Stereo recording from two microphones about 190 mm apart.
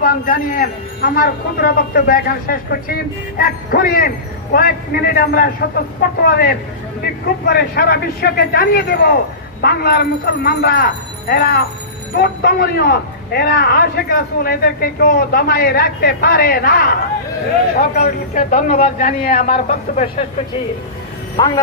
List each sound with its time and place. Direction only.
0.0 s a man's voice: 45° left (ahead or behind)